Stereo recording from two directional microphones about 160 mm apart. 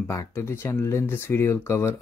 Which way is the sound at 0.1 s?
20° left (ahead or behind).